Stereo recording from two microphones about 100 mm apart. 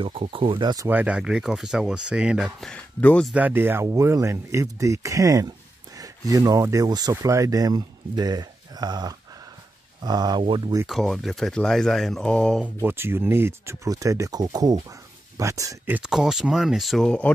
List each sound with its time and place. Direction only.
0.0 s speech: 75° right (ahead or behind); by 0.7 s 55° right (ahead or behind)
0.8 s speech: 15° right (ahead or behind)
2.6 s speech: 10° left (ahead or behind)
3.3 s speech: 20° right (ahead or behind); by 10.4 s 40° right (ahead or behind)
10.9 s speech: 5° left (ahead or behind)
12.6 s speech: 20° right (ahead or behind)
16.0 s speech: 5° right (ahead or behind)